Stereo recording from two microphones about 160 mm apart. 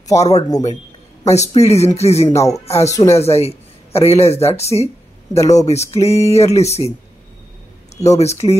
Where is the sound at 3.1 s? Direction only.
40° left (ahead or behind).